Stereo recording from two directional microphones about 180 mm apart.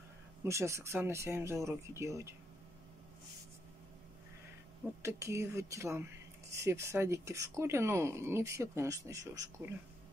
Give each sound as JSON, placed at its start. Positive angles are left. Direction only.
{"t": 0.4, "sound": "speech", "side_deg": -15}
{"t": 5.0, "sound": "speech", "side_deg": -15}